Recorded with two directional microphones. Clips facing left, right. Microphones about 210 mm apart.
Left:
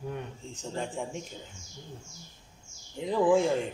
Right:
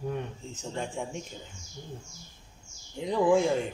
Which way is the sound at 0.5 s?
Centre (ahead or behind).